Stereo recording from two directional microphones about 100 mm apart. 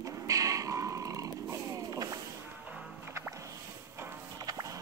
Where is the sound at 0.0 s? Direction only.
35° right (ahead or behind).